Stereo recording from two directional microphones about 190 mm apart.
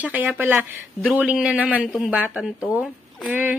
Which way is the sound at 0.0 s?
10° right (ahead or behind).